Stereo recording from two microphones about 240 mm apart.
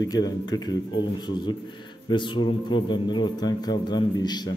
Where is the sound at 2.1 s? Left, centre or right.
Centre.